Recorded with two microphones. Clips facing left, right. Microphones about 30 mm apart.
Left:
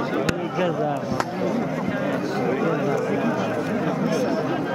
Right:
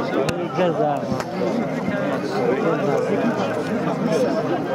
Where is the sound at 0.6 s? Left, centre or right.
Centre.